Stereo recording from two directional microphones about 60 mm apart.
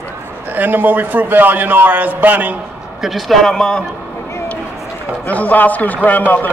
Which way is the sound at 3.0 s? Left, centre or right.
Centre.